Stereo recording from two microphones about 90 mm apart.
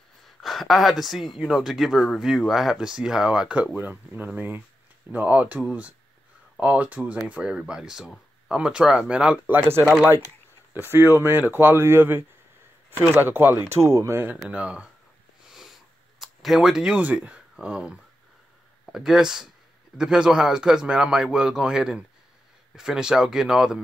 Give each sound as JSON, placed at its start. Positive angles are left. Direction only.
{"t": 0.4, "sound": "speech", "side_deg": 0}
{"t": 3.7, "sound": "a man's voice", "side_deg": -20}
{"t": 9.5, "sound": "speech", "side_deg": -25}
{"t": 14.5, "sound": "a man's voice", "side_deg": -15}
{"t": 15.4, "sound": "a sound", "side_deg": -5}
{"t": 18.9, "sound": "a man's voice", "side_deg": -5}